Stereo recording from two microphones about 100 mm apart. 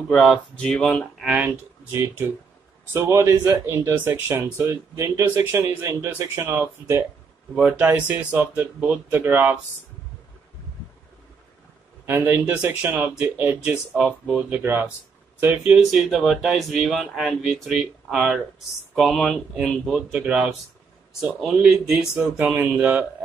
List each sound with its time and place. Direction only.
0.1 s speech: centre (ahead or behind)
1.2 s speech: 15° right (ahead or behind)
12.1 s speech: 20° right (ahead or behind)
15.8 s speech: centre (ahead or behind)